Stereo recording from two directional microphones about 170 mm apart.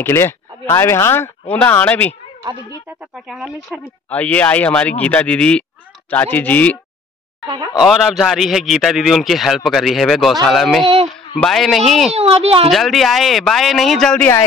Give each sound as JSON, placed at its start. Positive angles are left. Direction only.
{"t": 0.0, "sound": "speech", "side_deg": 15}
{"t": 3.3, "sound": "a man's voice", "side_deg": 0}
{"t": 7.8, "sound": "a man's voice", "side_deg": 0}
{"t": 12.1, "sound": "a child's voice", "side_deg": -35}
{"t": 12.6, "sound": "a man's voice", "side_deg": 0}